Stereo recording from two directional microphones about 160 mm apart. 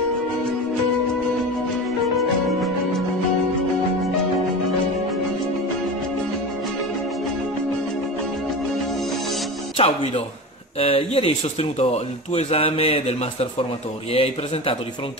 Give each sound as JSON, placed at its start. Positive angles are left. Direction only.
{"t": 2.1, "sound": "music", "side_deg": 0}
{"t": 9.8, "sound": "speech", "side_deg": 35}